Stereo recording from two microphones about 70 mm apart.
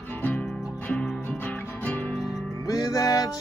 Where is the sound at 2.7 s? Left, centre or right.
Left.